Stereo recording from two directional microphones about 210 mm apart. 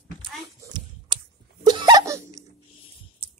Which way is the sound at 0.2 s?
20° right (ahead or behind).